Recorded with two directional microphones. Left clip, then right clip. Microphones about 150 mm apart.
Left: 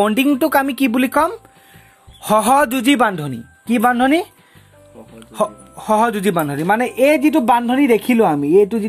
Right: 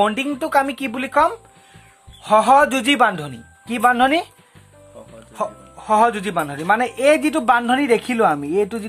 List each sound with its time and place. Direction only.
0.0 s speech: 50° left (ahead or behind)
2.2 s speech: 65° left (ahead or behind)
2.7 s speech: 45° left (ahead or behind)
5.3 s speech: 60° left (ahead or behind); by 6.9 s 40° left (ahead or behind)
7.0 s a woman's voice: 25° left (ahead or behind)